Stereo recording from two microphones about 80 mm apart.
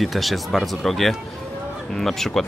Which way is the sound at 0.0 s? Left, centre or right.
Centre.